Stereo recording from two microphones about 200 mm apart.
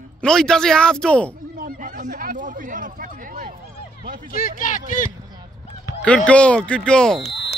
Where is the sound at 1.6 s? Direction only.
40° right (ahead or behind).